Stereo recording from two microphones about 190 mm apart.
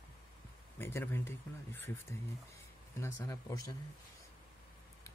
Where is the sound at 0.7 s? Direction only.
10° left (ahead or behind).